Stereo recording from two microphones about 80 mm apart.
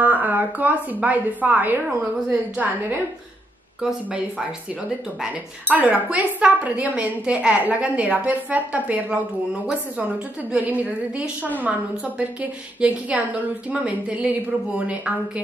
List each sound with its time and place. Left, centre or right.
0.0 s a woman's voice: right
5.7 s a woman's voice: centre